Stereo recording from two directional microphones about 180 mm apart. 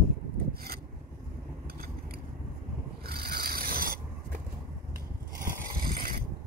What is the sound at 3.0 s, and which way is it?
Filing, 60° right (ahead or behind).